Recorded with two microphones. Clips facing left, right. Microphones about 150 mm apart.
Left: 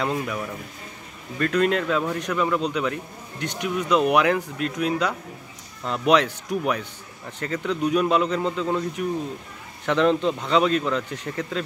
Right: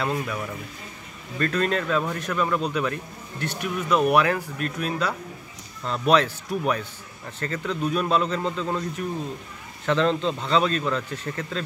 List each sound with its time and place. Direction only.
0.0 s speech: 15° left (ahead or behind)
1.4 s speech: 15° left (ahead or behind)